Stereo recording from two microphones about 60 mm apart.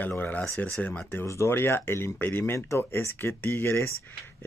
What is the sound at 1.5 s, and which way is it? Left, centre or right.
Speech, left.